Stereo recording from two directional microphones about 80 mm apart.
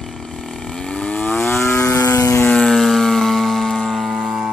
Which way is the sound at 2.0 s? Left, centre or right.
Left.